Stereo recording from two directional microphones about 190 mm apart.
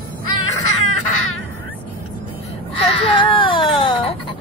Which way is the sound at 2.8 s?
30° left (ahead or behind).